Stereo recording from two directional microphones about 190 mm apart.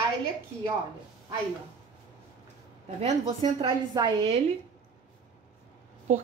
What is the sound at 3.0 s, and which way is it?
A woman's voice, 30° right (ahead or behind).